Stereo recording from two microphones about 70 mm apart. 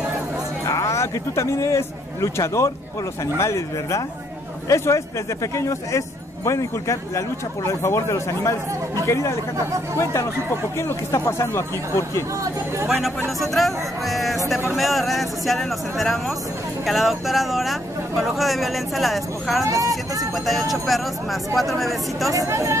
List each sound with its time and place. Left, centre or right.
0.7 s a man's voice: left
10.8 s speech: left
13.4 s speech: centre
19.6 s speech: right
20.4 s speech: centre
22.3 s speech: right